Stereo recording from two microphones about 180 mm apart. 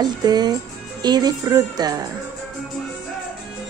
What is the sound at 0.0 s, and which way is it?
Speech, 20° right (ahead or behind).